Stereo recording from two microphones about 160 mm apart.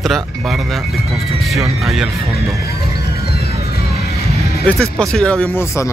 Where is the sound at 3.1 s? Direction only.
75° left (ahead or behind).